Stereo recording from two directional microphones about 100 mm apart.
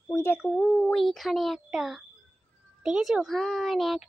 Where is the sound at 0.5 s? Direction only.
10° left (ahead or behind).